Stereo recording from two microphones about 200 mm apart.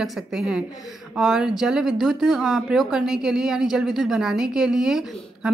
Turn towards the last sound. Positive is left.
turn(degrees=0)  # may be behind; listen again after turning